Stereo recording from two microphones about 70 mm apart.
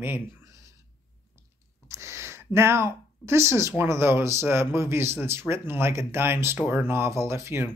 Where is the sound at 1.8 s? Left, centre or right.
Right.